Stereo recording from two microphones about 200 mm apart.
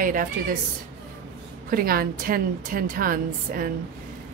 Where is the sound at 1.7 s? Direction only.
45° right (ahead or behind).